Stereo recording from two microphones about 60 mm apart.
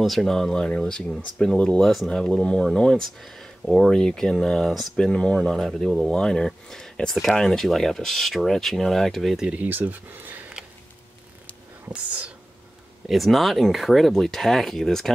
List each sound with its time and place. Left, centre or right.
0.0 s speech: centre
1.8 s speech: centre
3.9 s speech: centre
9.5 s speech: right
11.9 s speech: right
13.1 s speech: centre